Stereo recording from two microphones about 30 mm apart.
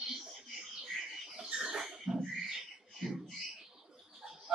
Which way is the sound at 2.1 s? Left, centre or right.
Centre.